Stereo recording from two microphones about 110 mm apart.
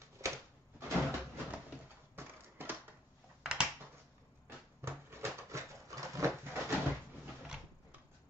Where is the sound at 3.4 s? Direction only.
10° right (ahead or behind).